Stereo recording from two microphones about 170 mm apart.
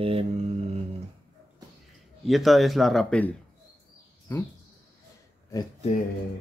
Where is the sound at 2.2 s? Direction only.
Centre (ahead or behind).